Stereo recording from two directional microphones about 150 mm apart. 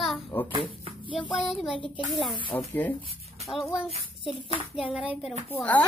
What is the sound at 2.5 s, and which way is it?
A man's voice, 10° left (ahead or behind).